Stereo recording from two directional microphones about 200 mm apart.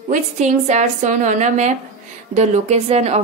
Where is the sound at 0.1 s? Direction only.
35° right (ahead or behind).